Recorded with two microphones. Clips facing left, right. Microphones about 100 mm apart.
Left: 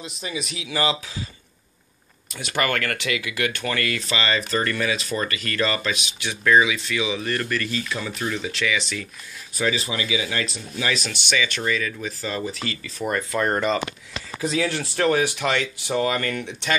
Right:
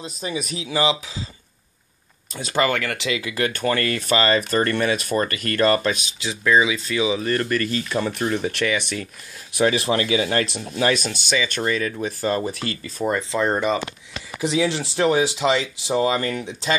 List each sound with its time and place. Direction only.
0.0 s speech: 40° right (ahead or behind)
0.7 s speech: 20° right (ahead or behind)
2.5 s speech: 20° right (ahead or behind); by 5.9 s 45° right (ahead or behind)
6.4 s speech: 25° right (ahead or behind); by 8.5 s 45° right (ahead or behind)
8.5 s speech: 55° right (ahead or behind)
11.1 s speech: 30° right (ahead or behind)
11.4 s speech: 40° right (ahead or behind)
13.0 s speech: 20° right (ahead or behind)